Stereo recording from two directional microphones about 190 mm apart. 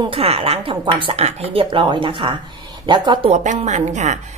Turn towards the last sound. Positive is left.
turn(degrees=-40)  # may be behind; listen again after turning